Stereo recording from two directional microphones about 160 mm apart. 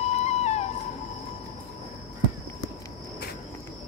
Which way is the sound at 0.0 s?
45° left (ahead or behind).